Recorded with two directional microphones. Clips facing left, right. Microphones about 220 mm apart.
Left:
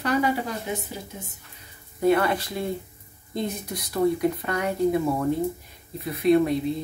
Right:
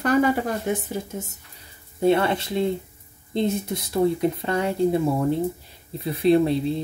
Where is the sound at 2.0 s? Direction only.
25° right (ahead or behind).